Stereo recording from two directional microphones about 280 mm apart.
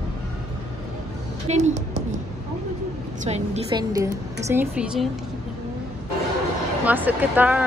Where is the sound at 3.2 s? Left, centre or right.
Right; by 5.1 s centre.